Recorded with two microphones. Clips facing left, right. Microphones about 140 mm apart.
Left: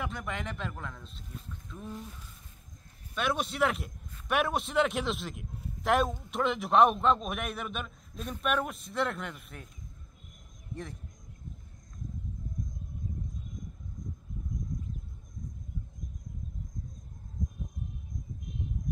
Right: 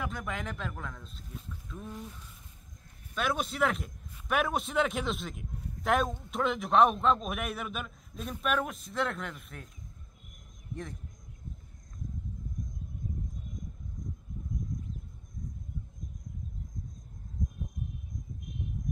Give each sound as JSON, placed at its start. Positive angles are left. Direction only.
{"t": 0.0, "sound": "a man's voice", "side_deg": 0}
{"t": 3.2, "sound": "a man's voice", "side_deg": 0}
{"t": 10.7, "sound": "speech", "side_deg": 0}